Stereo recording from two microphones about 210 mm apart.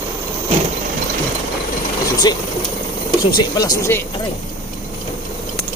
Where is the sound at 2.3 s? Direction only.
20° left (ahead or behind).